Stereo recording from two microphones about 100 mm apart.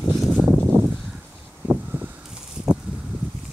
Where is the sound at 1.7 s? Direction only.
15° right (ahead or behind).